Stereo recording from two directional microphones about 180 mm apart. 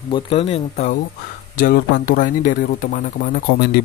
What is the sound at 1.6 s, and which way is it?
Speech, 50° left (ahead or behind).